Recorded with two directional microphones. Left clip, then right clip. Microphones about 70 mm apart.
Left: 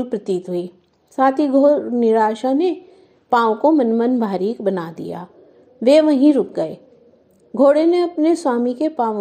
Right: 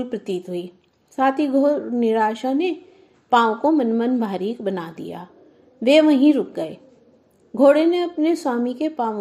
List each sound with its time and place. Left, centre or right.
0.0 s a woman's voice: left